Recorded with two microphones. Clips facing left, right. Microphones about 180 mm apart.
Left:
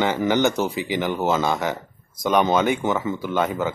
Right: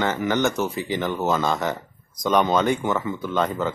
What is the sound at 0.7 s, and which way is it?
Speech, centre (ahead or behind).